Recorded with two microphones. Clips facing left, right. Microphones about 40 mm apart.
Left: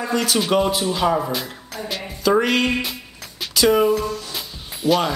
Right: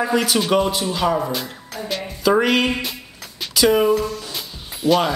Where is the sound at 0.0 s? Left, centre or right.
Centre.